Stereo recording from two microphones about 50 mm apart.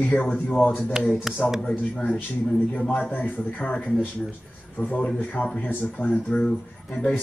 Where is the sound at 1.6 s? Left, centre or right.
Centre.